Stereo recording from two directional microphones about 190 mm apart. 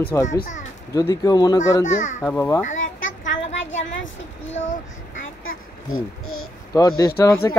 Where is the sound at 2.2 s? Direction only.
10° left (ahead or behind).